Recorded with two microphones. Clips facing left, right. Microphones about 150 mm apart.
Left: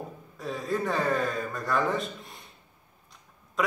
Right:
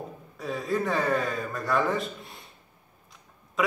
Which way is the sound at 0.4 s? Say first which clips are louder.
Right 2 dB; centre (ahead or behind).